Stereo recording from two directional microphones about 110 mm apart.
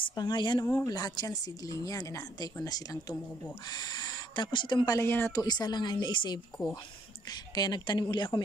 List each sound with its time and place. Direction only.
0.1 s speech: 40° left (ahead or behind)
0.7 s speech: 30° left (ahead or behind)
4.9 s speech: 20° left (ahead or behind)
5.4 s speech: 40° left (ahead or behind)
7.5 s speech: 40° left (ahead or behind)